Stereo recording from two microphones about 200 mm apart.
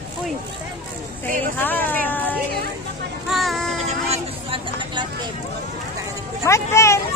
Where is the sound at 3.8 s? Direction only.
30° right (ahead or behind).